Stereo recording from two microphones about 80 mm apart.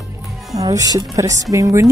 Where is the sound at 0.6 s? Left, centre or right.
Right.